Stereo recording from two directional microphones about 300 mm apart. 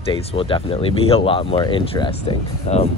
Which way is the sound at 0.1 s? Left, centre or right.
Centre.